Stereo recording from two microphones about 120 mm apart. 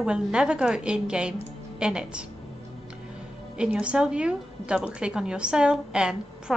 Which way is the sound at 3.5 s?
10° right (ahead or behind).